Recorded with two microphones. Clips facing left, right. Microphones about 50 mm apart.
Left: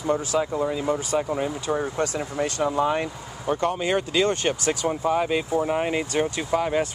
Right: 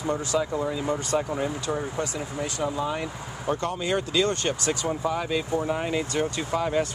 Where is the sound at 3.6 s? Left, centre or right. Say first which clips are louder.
Left 6 dB; left.